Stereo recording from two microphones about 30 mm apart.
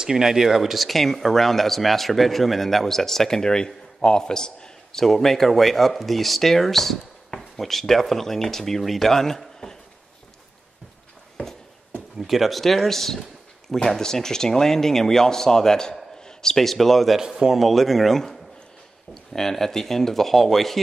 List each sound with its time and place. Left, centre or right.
0.1 s speech: centre; by 5.0 s left
5.0 s speech: centre
12.2 s speech: centre; by 16.5 s left
16.5 s speech: centre
17.2 s speech: centre
17.6 s speech: centre